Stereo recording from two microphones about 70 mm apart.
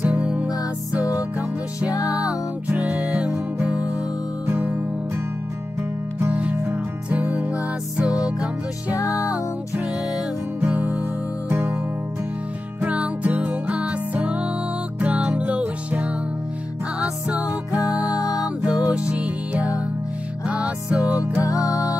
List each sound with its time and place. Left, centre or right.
0.0 s music: centre
2.7 s music: centre
4.5 s music: right
6.3 s music: right
9.1 s music: left
10.6 s music: right
12.8 s music: centre
18.0 s music: left
18.6 s music: centre